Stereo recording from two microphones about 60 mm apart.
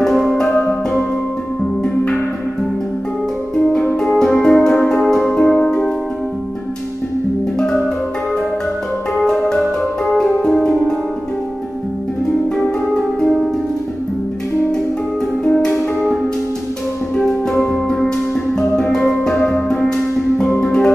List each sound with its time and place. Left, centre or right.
0.0 s music: centre
0.5 s music: left
3.5 s music: centre
7.5 s music: centre
9.1 s music: centre
10.3 s music: centre
12.9 s music: centre
15.4 s music: centre
17.1 s music: centre